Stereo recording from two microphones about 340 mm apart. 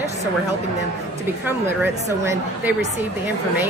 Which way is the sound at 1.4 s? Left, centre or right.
Centre.